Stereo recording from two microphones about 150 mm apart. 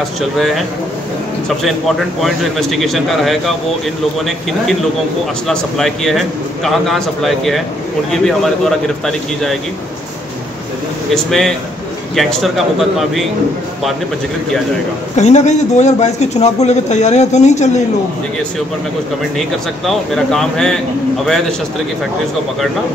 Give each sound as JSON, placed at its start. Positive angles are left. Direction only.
{"t": 1.6, "sound": "a man's voice", "side_deg": 0}
{"t": 5.5, "sound": "a man's voice", "side_deg": 5}
{"t": 11.2, "sound": "a man's voice", "side_deg": 0}
{"t": 15.1, "sound": "a man's voice", "side_deg": 50}
{"t": 19.9, "sound": "a man's voice", "side_deg": 5}